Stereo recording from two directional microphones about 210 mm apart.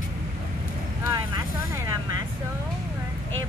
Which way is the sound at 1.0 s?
20° right (ahead or behind).